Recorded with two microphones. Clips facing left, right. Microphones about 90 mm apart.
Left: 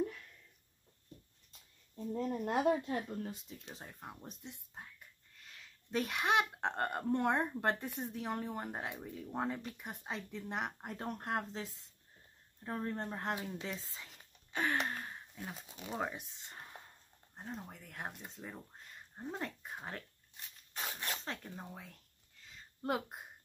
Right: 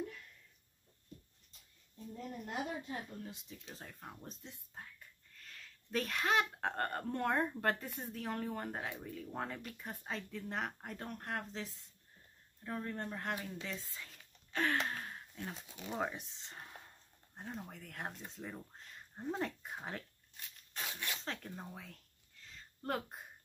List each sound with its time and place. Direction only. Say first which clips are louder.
2.1 s speech: left 7 dB; 65° left (ahead or behind)
3.3 s speech: left 4 dB; 40° left (ahead or behind)
3.7 s speech: even; 15° left (ahead or behind)
14.5 s speech: even; 5° left (ahead or behind)
20.8 s speech: left 1 dB; 30° left (ahead or behind)
21.5 s speech: even; 10° left (ahead or behind)